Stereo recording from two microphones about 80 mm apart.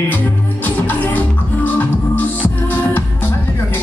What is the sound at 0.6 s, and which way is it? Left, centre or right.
Music, left.